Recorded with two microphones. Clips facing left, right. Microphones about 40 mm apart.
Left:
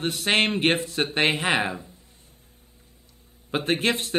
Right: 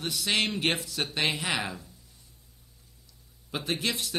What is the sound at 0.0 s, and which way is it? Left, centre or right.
A man's voice, left.